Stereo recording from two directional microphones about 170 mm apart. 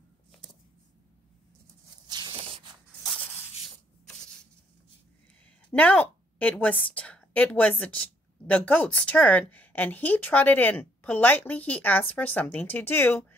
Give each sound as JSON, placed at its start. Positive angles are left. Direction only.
{"t": 2.0, "sound": "a sound", "side_deg": -25}
{"t": 3.0, "sound": "sanding", "side_deg": 5}
{"t": 5.7, "sound": "a woman's voice", "side_deg": 10}